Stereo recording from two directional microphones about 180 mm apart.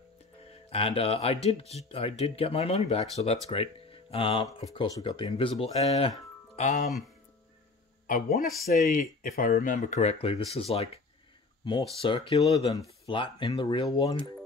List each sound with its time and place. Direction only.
0.7 s speech: 35° left (ahead or behind)
8.1 s speech: 55° left (ahead or behind); by 10.9 s 35° left (ahead or behind)
12.0 s speech: 30° left (ahead or behind)